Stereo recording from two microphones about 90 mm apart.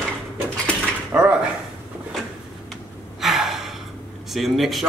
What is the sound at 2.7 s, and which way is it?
Gasp, 5° right (ahead or behind).